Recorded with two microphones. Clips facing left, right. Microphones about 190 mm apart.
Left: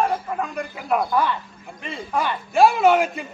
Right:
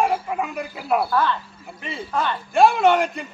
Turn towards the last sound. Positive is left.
turn(degrees=0)  # may be behind; listen again after turning